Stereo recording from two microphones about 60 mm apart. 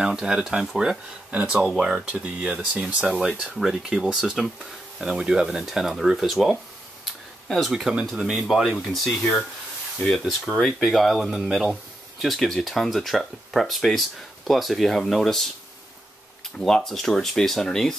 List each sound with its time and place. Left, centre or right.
0.0 s speech: centre
3.1 s speech: centre
7.5 s speech: centre
16.5 s speech: centre